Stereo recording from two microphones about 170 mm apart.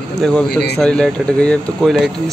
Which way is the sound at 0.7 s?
5° left (ahead or behind).